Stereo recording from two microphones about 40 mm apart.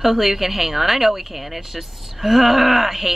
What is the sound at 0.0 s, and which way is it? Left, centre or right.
Speech, centre.